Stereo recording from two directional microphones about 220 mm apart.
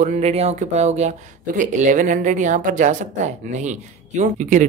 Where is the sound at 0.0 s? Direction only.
30° right (ahead or behind).